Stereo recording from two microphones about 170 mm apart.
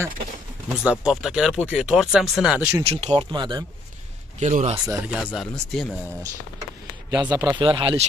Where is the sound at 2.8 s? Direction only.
35° right (ahead or behind).